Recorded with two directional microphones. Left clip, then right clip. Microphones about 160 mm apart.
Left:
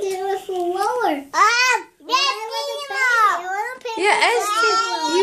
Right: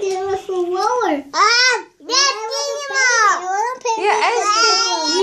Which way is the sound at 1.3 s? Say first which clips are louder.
Right 2 dB; 15° left (ahead or behind).